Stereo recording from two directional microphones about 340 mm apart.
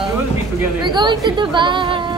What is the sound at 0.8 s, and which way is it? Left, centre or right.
A woman's voice, centre.